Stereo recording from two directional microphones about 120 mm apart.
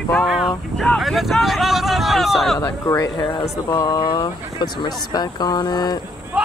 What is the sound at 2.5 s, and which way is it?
Speech, 25° left (ahead or behind).